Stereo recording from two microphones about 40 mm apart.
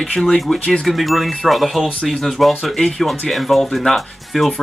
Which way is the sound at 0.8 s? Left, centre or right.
Centre.